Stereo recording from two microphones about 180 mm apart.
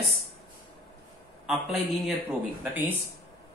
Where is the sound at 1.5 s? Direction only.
Centre (ahead or behind).